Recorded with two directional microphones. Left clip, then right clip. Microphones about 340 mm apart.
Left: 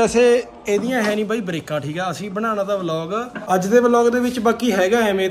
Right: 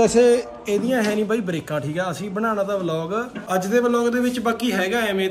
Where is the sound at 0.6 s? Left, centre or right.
Centre.